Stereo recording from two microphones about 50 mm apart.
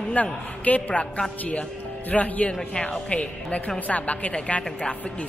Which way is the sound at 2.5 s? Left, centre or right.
Centre.